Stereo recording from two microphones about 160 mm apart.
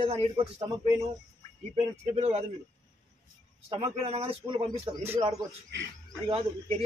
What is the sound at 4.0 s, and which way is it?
Speech, 40° right (ahead or behind).